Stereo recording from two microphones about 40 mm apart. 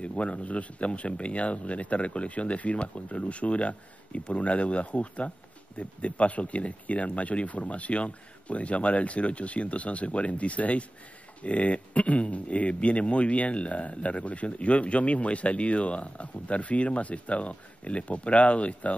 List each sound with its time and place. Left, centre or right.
0.0 s speech: left